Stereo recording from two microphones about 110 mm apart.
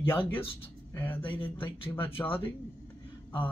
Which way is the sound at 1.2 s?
50° left (ahead or behind).